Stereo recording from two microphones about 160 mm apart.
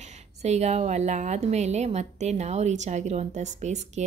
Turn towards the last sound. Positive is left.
turn(degrees=-45)  # may be behind; listen again after turning